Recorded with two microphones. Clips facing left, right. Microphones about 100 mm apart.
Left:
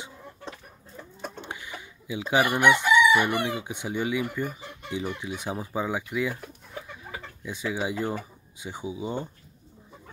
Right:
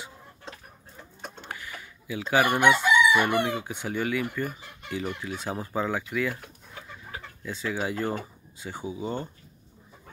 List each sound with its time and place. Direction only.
1.4 s chicken: 20° left (ahead or behind)
3.4 s speech: 15° left (ahead or behind)
7.4 s speech: 15° left (ahead or behind)